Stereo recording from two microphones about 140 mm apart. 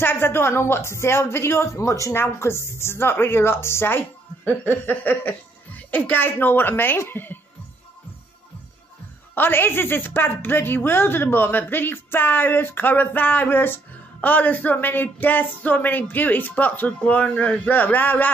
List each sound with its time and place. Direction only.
0.0 s speech: 15° left (ahead or behind)
9.3 s speech: 15° left (ahead or behind)